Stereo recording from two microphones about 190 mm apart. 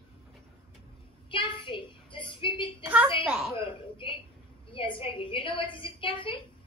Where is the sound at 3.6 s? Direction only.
25° left (ahead or behind).